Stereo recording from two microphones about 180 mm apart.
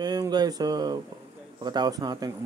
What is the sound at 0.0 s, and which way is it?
Speech, 20° right (ahead or behind).